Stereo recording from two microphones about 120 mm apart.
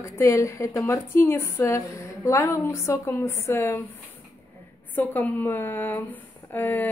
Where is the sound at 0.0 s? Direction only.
25° left (ahead or behind).